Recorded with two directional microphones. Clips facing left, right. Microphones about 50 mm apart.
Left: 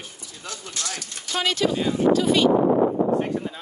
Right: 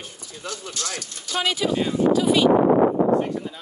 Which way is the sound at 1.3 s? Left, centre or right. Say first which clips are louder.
Even; centre.